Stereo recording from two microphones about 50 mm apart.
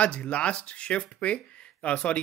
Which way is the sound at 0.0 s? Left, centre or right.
Left.